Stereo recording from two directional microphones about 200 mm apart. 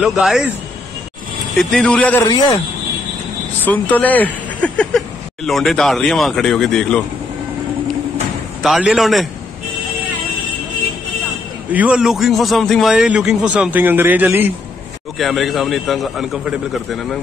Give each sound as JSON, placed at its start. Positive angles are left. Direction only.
{"t": 0.0, "sound": "a man's voice", "side_deg": 0}
{"t": 1.6, "sound": "a man's voice", "side_deg": 5}
{"t": 2.2, "sound": "a man's voice", "side_deg": 20}
{"t": 3.6, "sound": "speech", "side_deg": 10}
{"t": 8.6, "sound": "a man's voice", "side_deg": -5}
{"t": 11.7, "sound": "a man's voice", "side_deg": -5}